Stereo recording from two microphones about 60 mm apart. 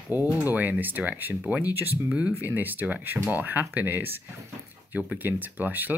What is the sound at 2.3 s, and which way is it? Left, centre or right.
Speech, right.